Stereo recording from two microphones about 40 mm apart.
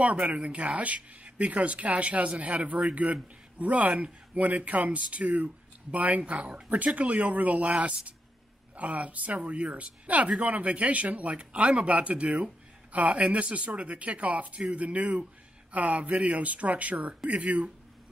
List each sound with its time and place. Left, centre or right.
0.3 s speech: right